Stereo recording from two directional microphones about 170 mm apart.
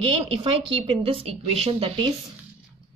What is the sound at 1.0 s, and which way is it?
Speech, 35° right (ahead or behind).